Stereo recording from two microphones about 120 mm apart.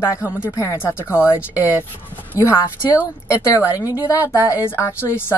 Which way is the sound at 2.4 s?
20° left (ahead or behind).